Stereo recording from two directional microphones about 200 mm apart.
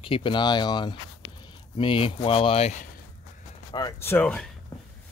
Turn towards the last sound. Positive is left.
turn(degrees=10)  # may be behind; listen again after turning